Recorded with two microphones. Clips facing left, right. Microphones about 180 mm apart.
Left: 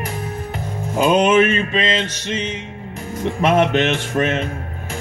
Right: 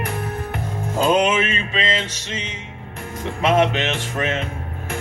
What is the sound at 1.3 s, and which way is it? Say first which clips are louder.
Mantra: left 8 dB; 55° left (ahead or behind).